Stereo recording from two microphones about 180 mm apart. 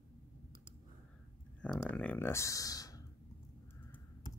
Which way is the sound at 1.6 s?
10° left (ahead or behind).